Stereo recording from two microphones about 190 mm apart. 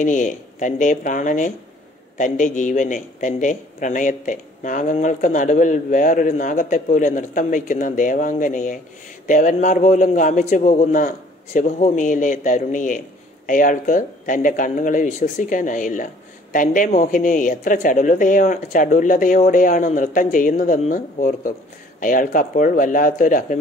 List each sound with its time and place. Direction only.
0.0 s speech: 40° left (ahead or behind)